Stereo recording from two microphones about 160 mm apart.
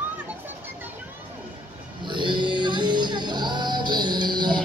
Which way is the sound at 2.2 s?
30° right (ahead or behind).